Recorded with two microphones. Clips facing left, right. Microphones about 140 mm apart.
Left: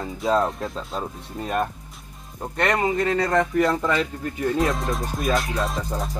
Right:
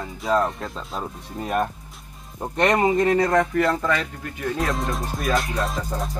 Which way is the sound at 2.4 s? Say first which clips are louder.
Right 3 dB; 20° right (ahead or behind).